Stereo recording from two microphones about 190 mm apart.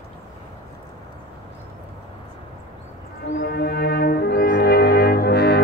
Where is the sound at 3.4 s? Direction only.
55° left (ahead or behind).